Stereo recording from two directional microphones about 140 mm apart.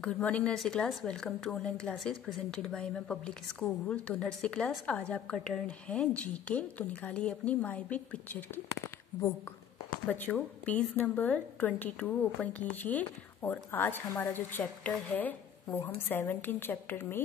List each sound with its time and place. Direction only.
0.0 s a woman's voice: 10° left (ahead or behind)
10.0 s a woman's voice: 10° left (ahead or behind)